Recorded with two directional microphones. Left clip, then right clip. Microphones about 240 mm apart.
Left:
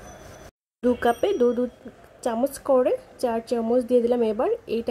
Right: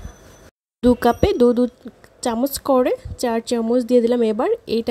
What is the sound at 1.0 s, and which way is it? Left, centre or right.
Speech, right.